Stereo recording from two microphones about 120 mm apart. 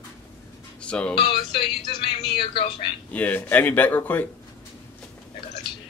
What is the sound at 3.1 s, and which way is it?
Speech, 15° left (ahead or behind).